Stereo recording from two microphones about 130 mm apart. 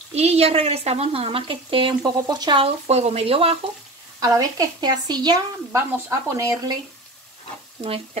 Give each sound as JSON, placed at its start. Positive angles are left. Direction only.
{"t": 0.1, "sound": "a woman's voice", "side_deg": -55}
{"t": 2.6, "sound": "a woman's voice", "side_deg": -55}
{"t": 4.2, "sound": "speech", "side_deg": -25}
{"t": 7.8, "sound": "a woman's voice", "side_deg": -45}